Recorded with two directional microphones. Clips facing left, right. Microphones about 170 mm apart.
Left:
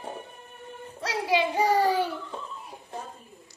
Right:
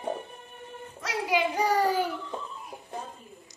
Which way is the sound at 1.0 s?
30° left (ahead or behind).